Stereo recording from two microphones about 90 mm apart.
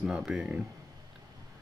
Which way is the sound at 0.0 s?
5° right (ahead or behind).